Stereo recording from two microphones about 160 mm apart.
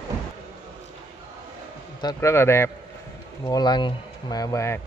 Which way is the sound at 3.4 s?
25° left (ahead or behind).